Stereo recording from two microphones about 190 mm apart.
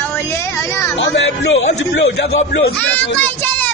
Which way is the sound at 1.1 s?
75° left (ahead or behind).